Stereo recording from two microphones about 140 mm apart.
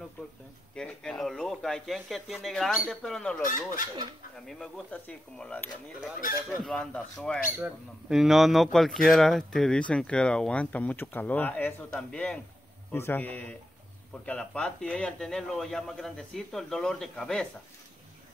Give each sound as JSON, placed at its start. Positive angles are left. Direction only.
{"t": 0.7, "sound": "speech", "side_deg": 5}
{"t": 3.4, "sound": "speech", "side_deg": 70}
{"t": 4.5, "sound": "a man's voice", "side_deg": 0}